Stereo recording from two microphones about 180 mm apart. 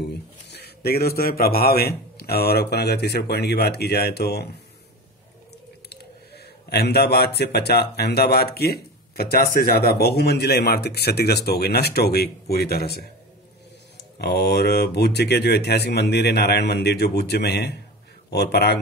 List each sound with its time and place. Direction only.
0.0 s speech: 65° left (ahead or behind)
5.9 s a sound: 65° left (ahead or behind)
7.3 s speech: 65° left (ahead or behind)